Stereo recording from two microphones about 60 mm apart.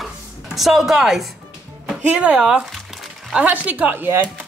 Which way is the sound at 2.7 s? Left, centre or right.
Centre.